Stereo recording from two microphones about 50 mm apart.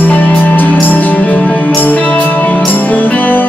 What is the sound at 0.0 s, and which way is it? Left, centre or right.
Music, left.